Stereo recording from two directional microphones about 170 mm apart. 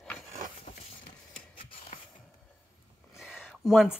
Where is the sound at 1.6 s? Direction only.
30° left (ahead or behind).